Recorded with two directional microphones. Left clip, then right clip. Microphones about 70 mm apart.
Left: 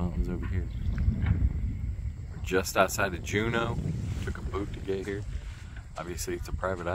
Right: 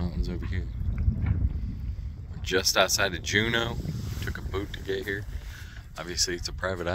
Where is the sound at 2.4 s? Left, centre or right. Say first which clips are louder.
Right 2 dB; centre.